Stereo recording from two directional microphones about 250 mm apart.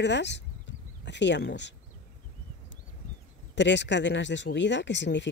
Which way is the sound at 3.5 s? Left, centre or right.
Left.